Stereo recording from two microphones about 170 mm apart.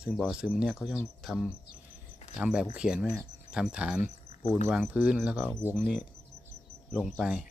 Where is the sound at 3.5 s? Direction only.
5° right (ahead or behind).